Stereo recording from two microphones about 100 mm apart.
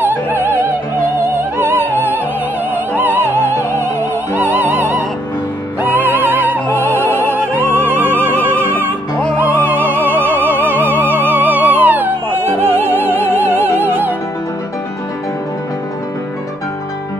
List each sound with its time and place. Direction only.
0.0 s opera: 20° right (ahead or behind)
4.3 s music: 20° right (ahead or behind)